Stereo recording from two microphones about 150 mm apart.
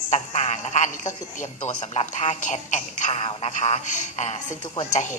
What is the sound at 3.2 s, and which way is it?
Music, 40° left (ahead or behind).